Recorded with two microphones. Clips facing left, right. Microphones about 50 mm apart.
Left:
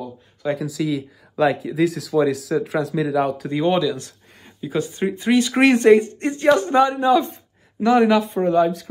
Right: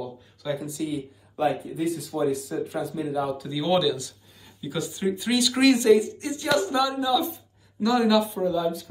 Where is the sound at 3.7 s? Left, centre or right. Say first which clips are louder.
Right 1 dB; left.